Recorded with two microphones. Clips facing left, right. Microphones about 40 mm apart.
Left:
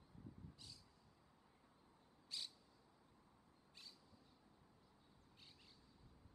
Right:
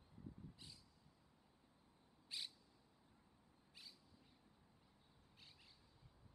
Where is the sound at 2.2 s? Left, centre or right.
Centre.